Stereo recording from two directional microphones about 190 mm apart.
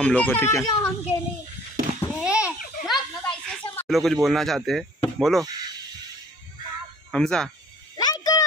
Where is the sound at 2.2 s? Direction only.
5° right (ahead or behind).